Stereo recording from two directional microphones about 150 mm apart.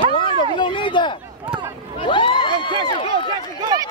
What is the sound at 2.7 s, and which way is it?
Speech, 30° right (ahead or behind).